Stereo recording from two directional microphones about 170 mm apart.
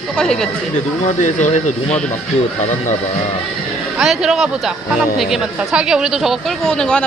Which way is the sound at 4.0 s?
Centre (ahead or behind).